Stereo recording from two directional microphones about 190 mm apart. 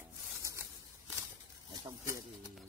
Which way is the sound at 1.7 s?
20° right (ahead or behind).